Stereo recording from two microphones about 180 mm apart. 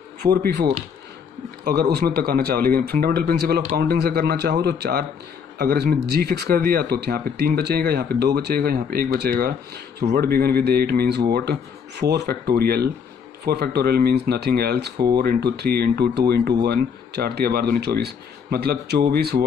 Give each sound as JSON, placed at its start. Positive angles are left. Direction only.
{"t": 0.2, "sound": "speech", "side_deg": -20}
{"t": 1.6, "sound": "speech", "side_deg": -55}
{"t": 15.0, "sound": "speech", "side_deg": -25}
{"t": 15.2, "sound": "speech", "side_deg": -65}